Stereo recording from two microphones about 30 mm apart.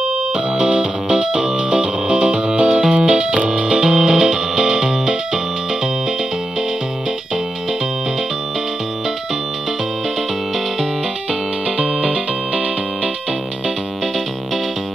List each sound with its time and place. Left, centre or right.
0.7 s music: right
12.0 s music: right